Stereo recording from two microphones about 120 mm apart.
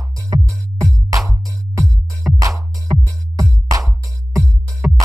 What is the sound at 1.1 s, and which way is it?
Music, 30° right (ahead or behind).